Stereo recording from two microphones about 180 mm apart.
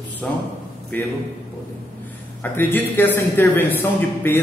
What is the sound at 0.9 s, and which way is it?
Speech, 10° left (ahead or behind).